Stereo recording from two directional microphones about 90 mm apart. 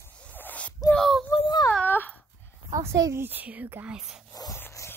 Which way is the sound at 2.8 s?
35° right (ahead or behind).